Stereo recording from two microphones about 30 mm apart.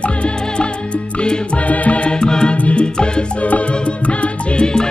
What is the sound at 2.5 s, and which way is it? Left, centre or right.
Music, left.